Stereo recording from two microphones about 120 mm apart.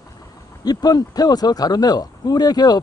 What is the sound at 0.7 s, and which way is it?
Speech, 35° left (ahead or behind).